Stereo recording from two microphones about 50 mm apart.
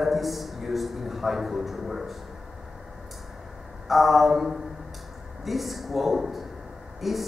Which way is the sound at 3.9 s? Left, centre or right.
Centre.